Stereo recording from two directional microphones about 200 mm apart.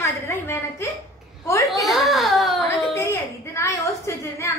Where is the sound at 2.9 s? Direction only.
15° left (ahead or behind).